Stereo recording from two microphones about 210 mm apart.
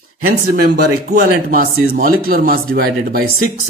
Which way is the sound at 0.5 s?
50° right (ahead or behind).